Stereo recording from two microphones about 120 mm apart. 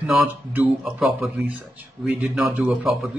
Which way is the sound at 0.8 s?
Centre (ahead or behind).